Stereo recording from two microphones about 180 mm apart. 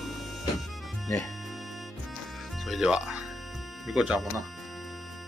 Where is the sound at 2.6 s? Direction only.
Centre (ahead or behind).